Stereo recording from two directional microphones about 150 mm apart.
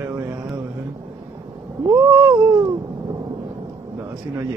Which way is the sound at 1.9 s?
20° right (ahead or behind).